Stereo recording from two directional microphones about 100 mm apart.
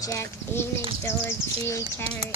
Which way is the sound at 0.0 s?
30° left (ahead or behind).